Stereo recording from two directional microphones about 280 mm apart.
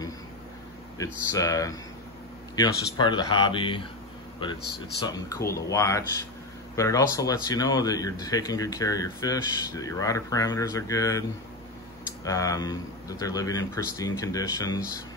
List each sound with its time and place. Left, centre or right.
0.9 s speech: centre
12.3 s speech: centre